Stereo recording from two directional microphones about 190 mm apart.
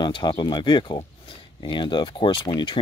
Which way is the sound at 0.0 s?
25° left (ahead or behind).